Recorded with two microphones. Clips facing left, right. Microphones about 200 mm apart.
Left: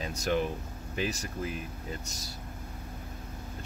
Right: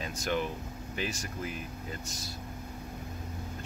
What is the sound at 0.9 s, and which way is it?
Speech, 35° left (ahead or behind).